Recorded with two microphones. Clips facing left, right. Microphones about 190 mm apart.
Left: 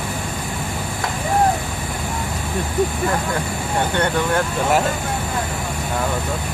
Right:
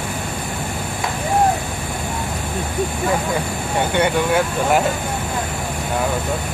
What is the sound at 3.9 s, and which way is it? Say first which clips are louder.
Speech: right 3 dB; 10° right (ahead or behind).